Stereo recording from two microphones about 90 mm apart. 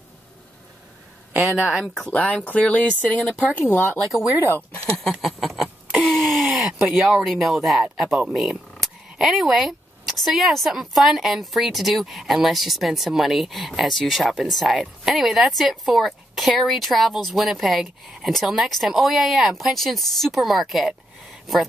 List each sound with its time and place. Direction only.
1.3 s speech: 20° right (ahead or behind)
2.0 s speech: 15° left (ahead or behind)
3.7 s speech: 25° left (ahead or behind)
4.9 s a sound: centre (ahead or behind)
6.6 s speech: 5° right (ahead or behind)